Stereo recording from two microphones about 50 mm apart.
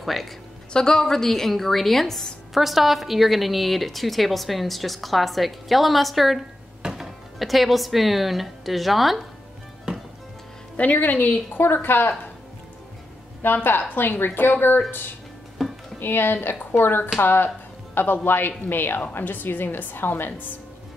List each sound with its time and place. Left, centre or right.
0.0 s a woman's voice: centre
0.7 s a woman's voice: centre
10.8 s a woman's voice: left
11.6 s a woman's voice: left
13.4 s a woman's voice: left
15.6 s music: centre
16.0 s a woman's voice: left